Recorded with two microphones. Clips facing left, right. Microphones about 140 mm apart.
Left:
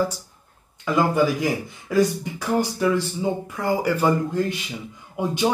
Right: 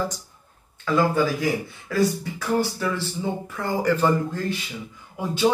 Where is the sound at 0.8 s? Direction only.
15° left (ahead or behind).